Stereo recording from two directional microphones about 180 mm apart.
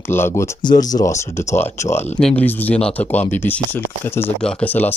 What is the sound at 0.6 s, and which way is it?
Speech, 25° left (ahead or behind).